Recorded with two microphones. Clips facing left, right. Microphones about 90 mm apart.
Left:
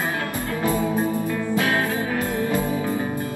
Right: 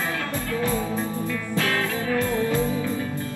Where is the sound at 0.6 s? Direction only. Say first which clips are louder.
Left 5 dB; 15° left (ahead or behind).